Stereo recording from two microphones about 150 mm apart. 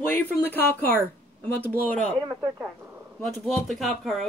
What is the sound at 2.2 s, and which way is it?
Speech, 10° right (ahead or behind).